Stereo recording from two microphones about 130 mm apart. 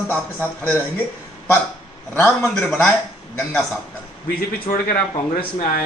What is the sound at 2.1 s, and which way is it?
Speech, 15° left (ahead or behind).